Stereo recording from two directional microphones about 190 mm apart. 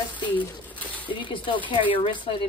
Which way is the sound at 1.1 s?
25° left (ahead or behind).